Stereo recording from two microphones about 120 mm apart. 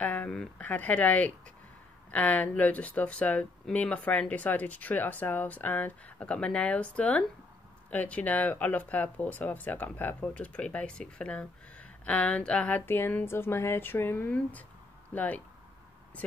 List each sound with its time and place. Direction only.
0.0 s speech: 10° left (ahead or behind)